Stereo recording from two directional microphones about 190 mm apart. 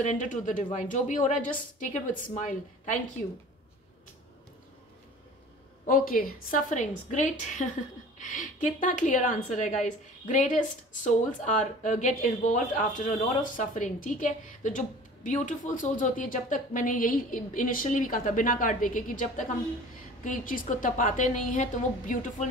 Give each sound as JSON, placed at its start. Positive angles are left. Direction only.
{"t": 0.0, "sound": "a woman's voice", "side_deg": 40}
{"t": 5.9, "sound": "a woman's voice", "side_deg": 45}